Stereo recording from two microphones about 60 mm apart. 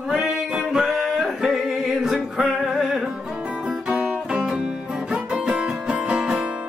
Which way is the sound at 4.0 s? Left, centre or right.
Centre.